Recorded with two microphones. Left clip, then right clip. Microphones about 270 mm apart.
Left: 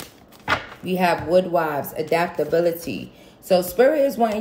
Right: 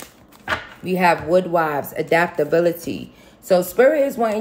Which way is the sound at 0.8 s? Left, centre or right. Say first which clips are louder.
Right 4 dB; right.